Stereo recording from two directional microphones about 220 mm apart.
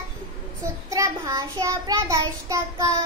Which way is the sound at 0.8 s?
15° right (ahead or behind).